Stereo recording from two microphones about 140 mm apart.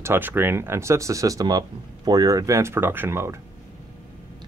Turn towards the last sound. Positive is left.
turn(degrees=-20)  # may be behind; listen again after turning